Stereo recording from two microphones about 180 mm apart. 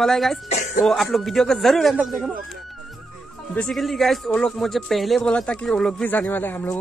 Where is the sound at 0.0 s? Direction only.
Centre (ahead or behind).